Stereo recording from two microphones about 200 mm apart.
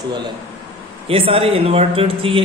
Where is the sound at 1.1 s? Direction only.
30° right (ahead or behind).